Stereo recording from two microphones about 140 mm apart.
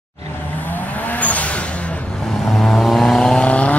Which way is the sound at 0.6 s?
15° left (ahead or behind).